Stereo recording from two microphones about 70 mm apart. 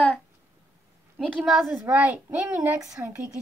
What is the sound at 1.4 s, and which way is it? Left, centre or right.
Speech, centre.